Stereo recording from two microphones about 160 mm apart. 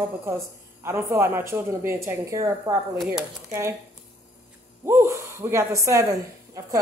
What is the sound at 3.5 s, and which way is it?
Speech, 15° right (ahead or behind).